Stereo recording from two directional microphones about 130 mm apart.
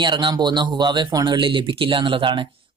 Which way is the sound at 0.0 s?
35° right (ahead or behind).